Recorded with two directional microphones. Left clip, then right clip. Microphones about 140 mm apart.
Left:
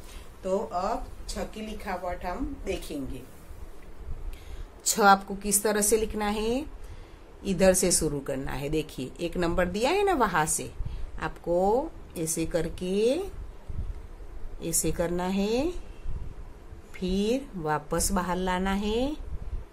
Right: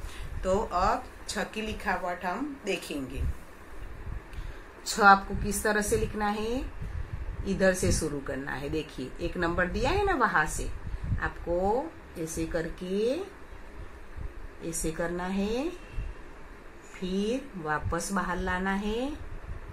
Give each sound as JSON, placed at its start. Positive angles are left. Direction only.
{"t": 0.4, "sound": "speech", "side_deg": 10}
{"t": 4.9, "sound": "a woman's voice", "side_deg": 45}
{"t": 14.6, "sound": "a woman's voice", "side_deg": 35}
{"t": 17.0, "sound": "a woman's voice", "side_deg": 35}